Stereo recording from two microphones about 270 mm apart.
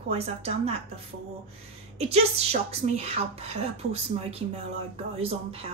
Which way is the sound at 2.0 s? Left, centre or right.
Right.